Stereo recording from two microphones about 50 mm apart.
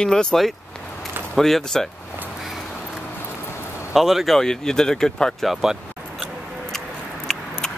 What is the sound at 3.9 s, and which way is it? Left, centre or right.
Speech, centre.